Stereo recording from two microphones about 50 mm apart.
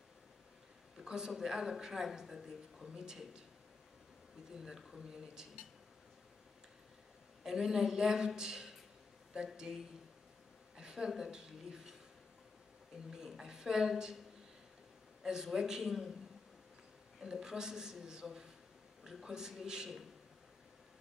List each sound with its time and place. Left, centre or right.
0.9 s speech: centre
4.6 s speech: centre
7.4 s speech: centre
10.8 s a woman's voice: centre
13.1 s speech: centre
15.2 s speech: centre
17.2 s speech: centre